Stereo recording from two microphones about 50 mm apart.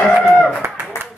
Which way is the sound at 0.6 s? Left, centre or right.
Right.